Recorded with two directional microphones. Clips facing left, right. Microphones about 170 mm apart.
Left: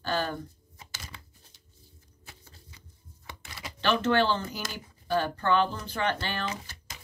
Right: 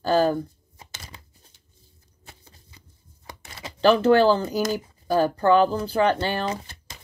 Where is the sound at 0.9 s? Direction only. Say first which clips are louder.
Right 1 dB; 20° right (ahead or behind).